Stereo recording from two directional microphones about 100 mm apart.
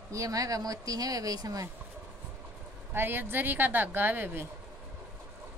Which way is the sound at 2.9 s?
20° right (ahead or behind).